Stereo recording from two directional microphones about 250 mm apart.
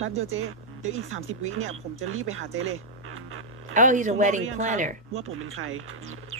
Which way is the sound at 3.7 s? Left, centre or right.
Right.